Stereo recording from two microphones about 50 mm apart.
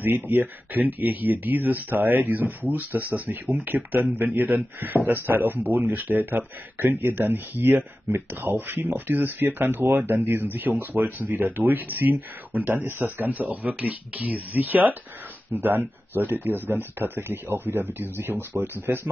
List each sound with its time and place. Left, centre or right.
0.0 s speech: right